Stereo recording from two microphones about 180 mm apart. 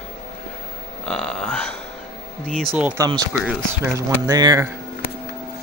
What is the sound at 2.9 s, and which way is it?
Speech, 25° right (ahead or behind).